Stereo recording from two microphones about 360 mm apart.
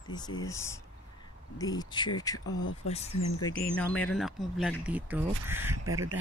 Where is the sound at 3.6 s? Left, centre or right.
Centre.